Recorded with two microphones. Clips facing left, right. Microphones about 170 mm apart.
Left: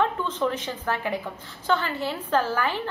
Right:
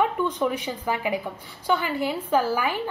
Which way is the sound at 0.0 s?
10° right (ahead or behind).